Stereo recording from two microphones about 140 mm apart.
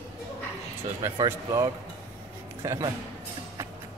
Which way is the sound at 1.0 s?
25° right (ahead or behind).